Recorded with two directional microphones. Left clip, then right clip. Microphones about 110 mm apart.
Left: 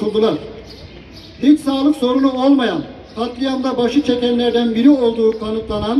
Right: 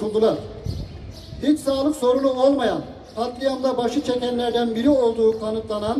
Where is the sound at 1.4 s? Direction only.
40° right (ahead or behind).